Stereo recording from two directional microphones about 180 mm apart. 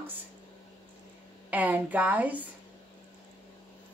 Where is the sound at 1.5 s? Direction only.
10° right (ahead or behind).